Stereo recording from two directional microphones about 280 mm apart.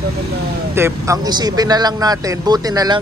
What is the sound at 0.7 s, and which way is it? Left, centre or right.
A man's voice, centre.